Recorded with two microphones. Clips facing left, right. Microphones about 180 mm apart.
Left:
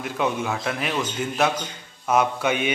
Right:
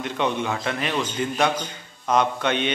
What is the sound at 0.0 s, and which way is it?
A man's voice, 5° left (ahead or behind).